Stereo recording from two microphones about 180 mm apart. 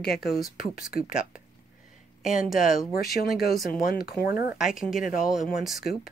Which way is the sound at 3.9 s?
55° left (ahead or behind).